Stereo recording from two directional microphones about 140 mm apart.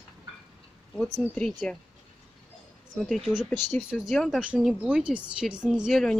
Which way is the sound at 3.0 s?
Centre (ahead or behind).